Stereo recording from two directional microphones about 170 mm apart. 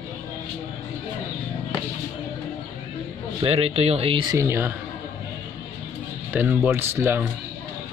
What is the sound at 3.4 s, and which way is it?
Speech, 35° right (ahead or behind).